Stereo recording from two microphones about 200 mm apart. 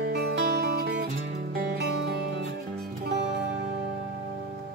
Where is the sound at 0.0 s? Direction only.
55° right (ahead or behind).